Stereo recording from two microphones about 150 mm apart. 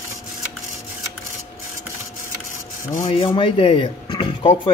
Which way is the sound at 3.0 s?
35° left (ahead or behind).